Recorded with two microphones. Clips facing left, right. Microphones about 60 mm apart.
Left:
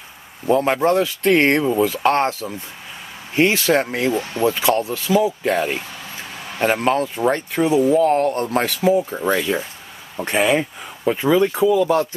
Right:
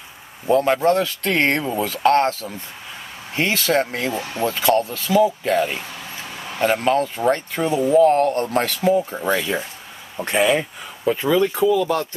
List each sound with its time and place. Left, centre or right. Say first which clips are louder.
0.5 s speech: even; centre
1.2 s speech: left 4 dB; centre
2.0 s speech: right 1 dB; centre
6.7 s speech: even; centre
7.5 s speech: left 1 dB; centre
8.2 s speech: even; centre
11.7 s speech: left 3 dB; left